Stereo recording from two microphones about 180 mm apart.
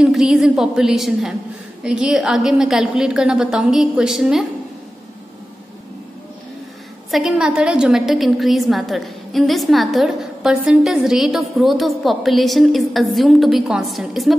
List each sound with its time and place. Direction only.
0.0 s a woman's voice: 5° right (ahead or behind)
7.1 s a woman's voice: centre (ahead or behind)